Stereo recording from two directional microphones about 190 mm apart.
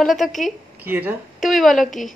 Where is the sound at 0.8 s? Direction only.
10° right (ahead or behind).